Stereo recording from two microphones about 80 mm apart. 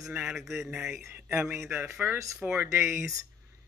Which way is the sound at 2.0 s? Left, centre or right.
Right.